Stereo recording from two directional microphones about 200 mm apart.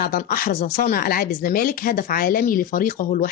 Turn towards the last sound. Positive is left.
turn(degrees=45)  # may be behind; listen again after turning